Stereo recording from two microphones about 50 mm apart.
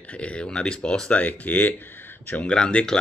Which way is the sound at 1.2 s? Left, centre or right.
Left.